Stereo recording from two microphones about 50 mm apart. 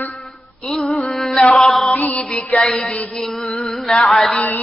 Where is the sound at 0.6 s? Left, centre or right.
Centre.